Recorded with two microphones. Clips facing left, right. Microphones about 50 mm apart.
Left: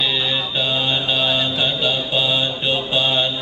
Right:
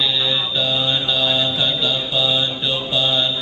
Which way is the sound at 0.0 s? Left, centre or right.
Left.